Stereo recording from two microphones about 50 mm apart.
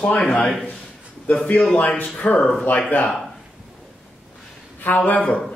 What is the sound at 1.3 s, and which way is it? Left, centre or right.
A man's voice, left.